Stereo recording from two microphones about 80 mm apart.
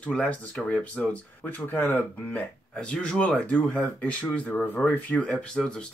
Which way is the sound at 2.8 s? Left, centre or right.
Centre.